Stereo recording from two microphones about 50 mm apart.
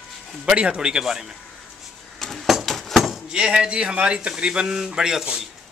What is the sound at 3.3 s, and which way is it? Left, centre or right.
A man's voice, centre.